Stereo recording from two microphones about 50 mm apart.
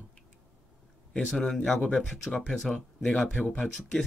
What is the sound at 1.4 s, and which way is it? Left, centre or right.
Speech, centre.